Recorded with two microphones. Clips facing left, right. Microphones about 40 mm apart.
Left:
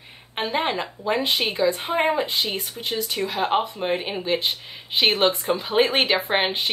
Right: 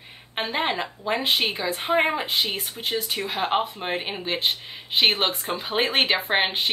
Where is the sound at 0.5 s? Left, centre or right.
Centre.